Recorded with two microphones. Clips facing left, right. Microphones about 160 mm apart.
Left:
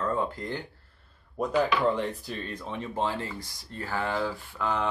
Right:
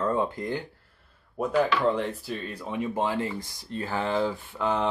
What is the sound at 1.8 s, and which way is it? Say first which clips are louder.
Speech: right 1 dB; centre (ahead or behind).